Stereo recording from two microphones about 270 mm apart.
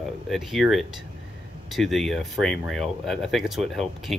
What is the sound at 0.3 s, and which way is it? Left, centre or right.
Speech, centre.